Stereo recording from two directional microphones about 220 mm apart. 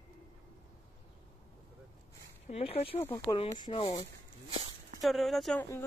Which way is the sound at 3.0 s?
15° left (ahead or behind).